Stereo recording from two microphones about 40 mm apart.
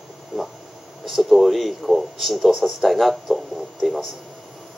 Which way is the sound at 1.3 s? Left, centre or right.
Centre.